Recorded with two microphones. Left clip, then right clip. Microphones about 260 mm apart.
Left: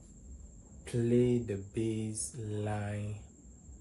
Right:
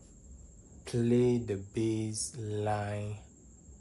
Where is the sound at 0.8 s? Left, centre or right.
Right.